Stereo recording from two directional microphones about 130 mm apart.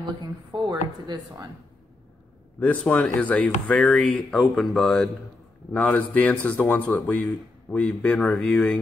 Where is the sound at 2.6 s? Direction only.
10° left (ahead or behind).